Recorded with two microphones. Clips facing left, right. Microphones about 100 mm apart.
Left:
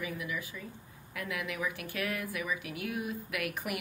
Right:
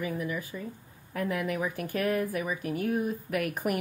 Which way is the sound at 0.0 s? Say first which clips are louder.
Right 5 dB; 40° right (ahead or behind).